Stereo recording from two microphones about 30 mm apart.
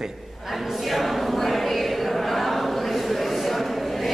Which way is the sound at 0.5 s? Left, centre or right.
Centre.